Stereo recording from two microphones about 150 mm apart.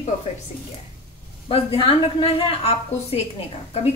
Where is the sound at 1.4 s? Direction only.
40° left (ahead or behind).